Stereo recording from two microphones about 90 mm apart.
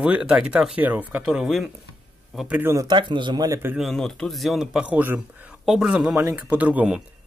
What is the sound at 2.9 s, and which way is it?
Speech, 60° right (ahead or behind).